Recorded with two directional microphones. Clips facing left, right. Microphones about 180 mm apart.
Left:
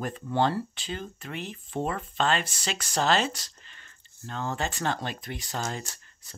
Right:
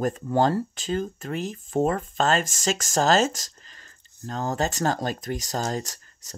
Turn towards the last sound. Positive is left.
turn(degrees=-40)  # may be behind; listen again after turning